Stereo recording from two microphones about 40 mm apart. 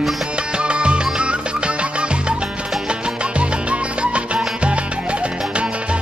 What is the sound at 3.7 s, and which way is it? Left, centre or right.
Music, right.